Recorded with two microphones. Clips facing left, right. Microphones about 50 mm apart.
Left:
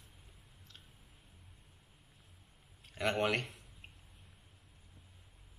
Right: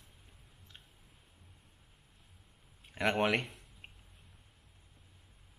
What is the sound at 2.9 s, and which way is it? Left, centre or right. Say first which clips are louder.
Speech: right 3 dB; right.